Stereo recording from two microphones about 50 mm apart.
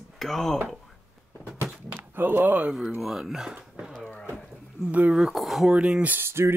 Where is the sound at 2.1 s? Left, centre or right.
Right.